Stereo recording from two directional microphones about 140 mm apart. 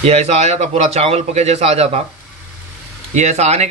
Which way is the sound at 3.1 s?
55° right (ahead or behind).